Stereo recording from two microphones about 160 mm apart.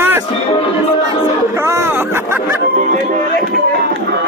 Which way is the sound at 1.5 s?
15° right (ahead or behind).